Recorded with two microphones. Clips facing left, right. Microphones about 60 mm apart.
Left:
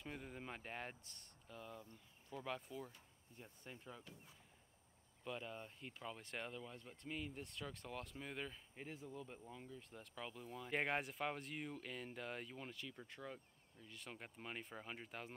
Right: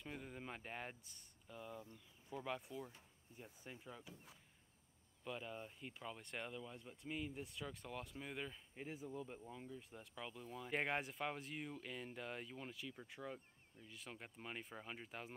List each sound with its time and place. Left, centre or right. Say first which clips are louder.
0.0 s speech: even; centre